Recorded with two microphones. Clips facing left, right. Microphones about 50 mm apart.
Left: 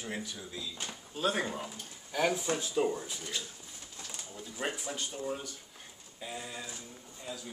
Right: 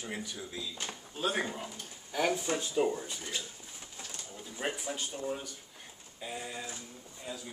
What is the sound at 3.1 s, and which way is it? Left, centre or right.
Speech, centre.